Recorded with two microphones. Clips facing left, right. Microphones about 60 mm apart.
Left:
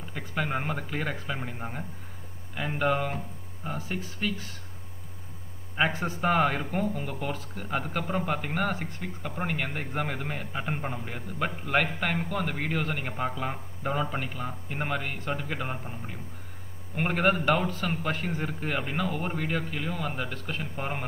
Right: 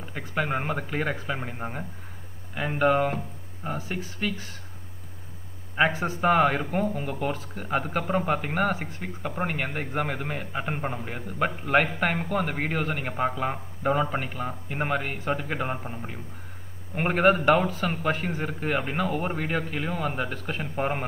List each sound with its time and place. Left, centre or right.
0.0 s a man's voice: centre
5.8 s a man's voice: centre; by 12.8 s right
12.8 s a man's voice: centre